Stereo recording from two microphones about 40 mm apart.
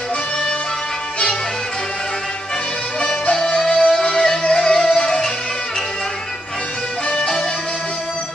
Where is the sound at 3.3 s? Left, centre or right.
Centre.